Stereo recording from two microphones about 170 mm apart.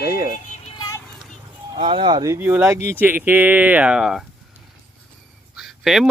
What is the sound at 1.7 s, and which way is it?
Speech, 35° right (ahead or behind).